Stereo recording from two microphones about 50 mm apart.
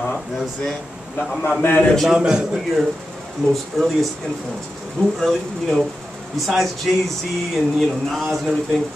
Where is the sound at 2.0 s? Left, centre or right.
Centre.